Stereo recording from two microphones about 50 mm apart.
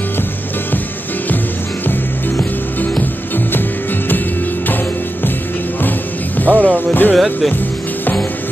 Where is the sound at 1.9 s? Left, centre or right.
Left.